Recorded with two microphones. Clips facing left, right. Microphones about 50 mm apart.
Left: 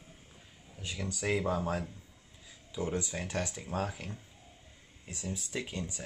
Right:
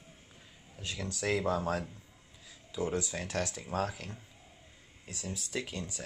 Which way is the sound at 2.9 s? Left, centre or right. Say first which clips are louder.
Even; centre.